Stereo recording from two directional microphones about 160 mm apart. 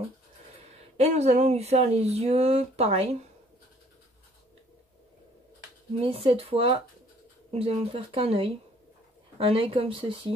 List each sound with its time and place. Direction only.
0.9 s speech: 40° right (ahead or behind)
5.9 s speech: 35° right (ahead or behind)